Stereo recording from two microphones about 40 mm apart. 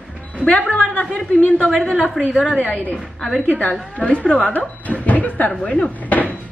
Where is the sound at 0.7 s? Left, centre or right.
Left.